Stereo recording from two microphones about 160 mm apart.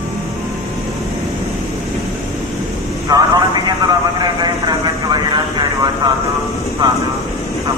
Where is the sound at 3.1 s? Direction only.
25° right (ahead or behind).